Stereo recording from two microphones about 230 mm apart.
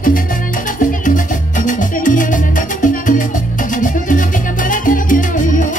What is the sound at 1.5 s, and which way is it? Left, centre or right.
Music, left.